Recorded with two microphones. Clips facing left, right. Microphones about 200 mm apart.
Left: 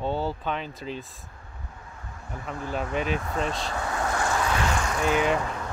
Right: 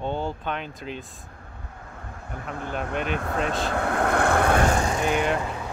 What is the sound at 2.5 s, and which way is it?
Speech, centre (ahead or behind).